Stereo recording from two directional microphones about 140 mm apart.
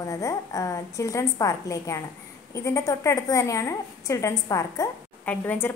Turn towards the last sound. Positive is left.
turn(degrees=15)  # may be behind; listen again after turning